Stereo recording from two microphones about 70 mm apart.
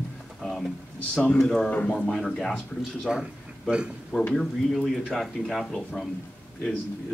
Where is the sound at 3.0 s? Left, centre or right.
Centre.